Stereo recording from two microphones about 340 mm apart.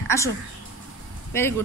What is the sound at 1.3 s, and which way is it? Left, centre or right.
Speech, centre.